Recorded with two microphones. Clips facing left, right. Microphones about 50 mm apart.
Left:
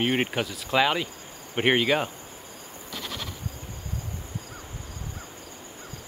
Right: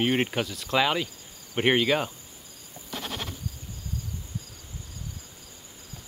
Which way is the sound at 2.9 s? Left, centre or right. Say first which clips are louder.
Right 1 dB; right.